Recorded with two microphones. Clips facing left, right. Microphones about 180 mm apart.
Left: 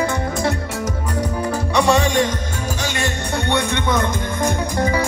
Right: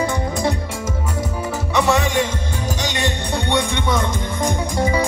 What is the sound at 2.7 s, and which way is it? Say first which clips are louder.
Music: even; 20° right (ahead or behind).